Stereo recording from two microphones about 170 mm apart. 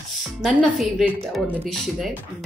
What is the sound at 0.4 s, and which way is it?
A woman's voice, centre (ahead or behind).